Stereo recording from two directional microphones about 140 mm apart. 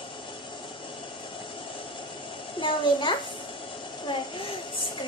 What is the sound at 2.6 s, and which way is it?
Speech, 35° left (ahead or behind).